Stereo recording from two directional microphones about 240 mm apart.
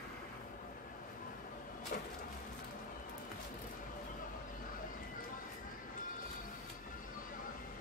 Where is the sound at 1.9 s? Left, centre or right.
Left.